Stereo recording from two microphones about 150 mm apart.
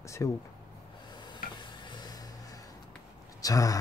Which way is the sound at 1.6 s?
30° left (ahead or behind).